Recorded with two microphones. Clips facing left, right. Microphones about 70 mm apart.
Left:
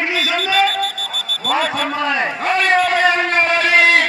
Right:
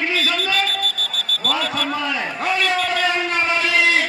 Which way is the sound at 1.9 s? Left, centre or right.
Left.